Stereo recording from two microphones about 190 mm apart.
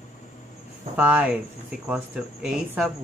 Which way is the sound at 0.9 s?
5° right (ahead or behind).